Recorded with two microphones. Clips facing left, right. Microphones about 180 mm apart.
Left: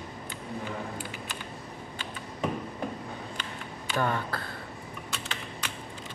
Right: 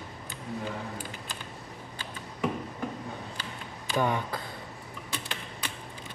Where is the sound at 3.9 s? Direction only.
15° right (ahead or behind).